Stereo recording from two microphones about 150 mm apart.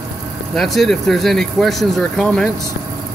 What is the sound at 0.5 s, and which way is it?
Speech, centre (ahead or behind).